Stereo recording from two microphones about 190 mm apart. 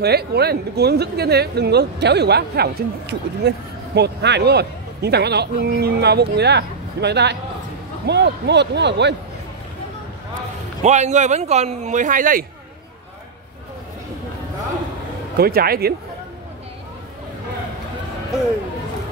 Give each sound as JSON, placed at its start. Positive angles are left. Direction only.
{"t": 0.0, "sound": "speech", "side_deg": -60}
{"t": 10.8, "sound": "a man's voice", "side_deg": -35}
{"t": 15.3, "sound": "speech", "side_deg": -55}